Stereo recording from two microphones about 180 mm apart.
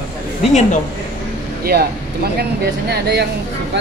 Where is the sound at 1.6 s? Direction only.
60° right (ahead or behind).